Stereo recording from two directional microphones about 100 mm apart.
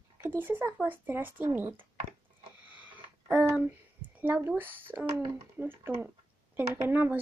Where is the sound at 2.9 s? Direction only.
15° right (ahead or behind).